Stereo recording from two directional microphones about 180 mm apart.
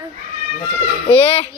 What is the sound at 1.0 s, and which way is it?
Speech, 30° left (ahead or behind).